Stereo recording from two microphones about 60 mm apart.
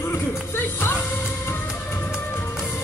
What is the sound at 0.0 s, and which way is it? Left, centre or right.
Music, left.